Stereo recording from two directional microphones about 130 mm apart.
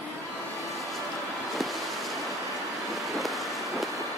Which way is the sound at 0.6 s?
Centre (ahead or behind).